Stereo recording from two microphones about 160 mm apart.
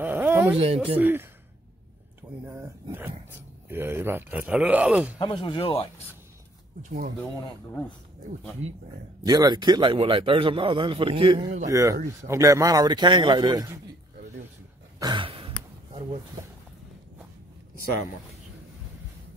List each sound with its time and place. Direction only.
0.0 s a sound: 10° right (ahead or behind)
0.5 s a man's voice: 35° right (ahead or behind)
0.9 s speech: 10° right (ahead or behind)
2.4 s speech: 15° right (ahead or behind)
5.2 s speech: 30° left (ahead or behind)
6.8 s speech: 65° right (ahead or behind)
9.2 s a man's voice: 25° right (ahead or behind)
11.6 s a man's voice: 20° right (ahead or behind)
15.0 s a sound: 30° right (ahead or behind)